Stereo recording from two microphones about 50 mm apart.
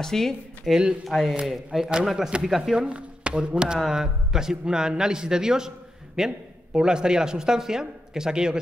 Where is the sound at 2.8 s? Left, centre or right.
Centre.